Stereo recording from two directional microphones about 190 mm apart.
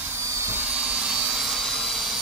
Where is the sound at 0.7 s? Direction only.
5° right (ahead or behind).